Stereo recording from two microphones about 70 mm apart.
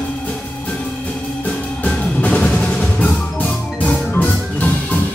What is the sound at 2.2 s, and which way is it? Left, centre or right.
Music, centre.